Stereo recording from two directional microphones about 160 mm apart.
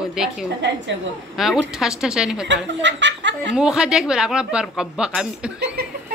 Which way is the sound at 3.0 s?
90° right.